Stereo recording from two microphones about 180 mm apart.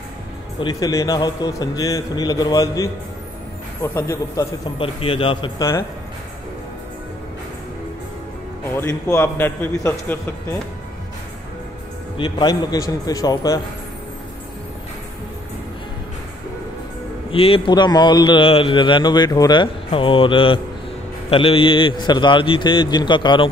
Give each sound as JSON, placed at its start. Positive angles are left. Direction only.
{"t": 0.6, "sound": "a man's voice", "side_deg": 25}
{"t": 8.7, "sound": "a man's voice", "side_deg": 15}
{"t": 12.2, "sound": "a man's voice", "side_deg": 25}
{"t": 17.3, "sound": "a man's voice", "side_deg": 30}